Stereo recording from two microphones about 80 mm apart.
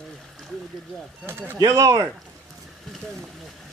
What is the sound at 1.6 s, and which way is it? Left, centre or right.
Speech, right.